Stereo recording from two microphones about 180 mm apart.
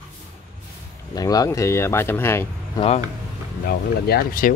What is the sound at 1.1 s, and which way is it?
Speech, 20° left (ahead or behind).